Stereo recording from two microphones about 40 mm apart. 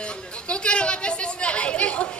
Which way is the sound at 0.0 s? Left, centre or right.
Left.